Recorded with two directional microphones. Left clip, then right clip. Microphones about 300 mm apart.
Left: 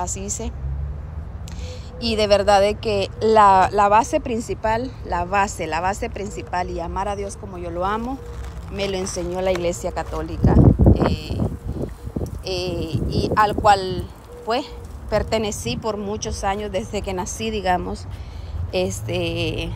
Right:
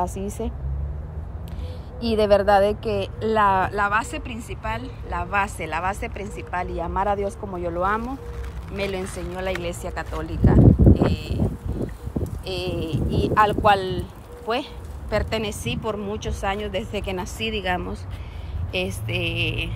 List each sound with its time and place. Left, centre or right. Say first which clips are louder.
0.0 s speech: right 1 dB; centre
2.0 s speech: left 1 dB; centre
10.4 s a sound: left 1 dB; centre
12.4 s a sound: left 4 dB; left
12.7 s speech: left 1 dB; centre
15.0 s speech: left 4 dB; centre
18.7 s speech: left 3 dB; left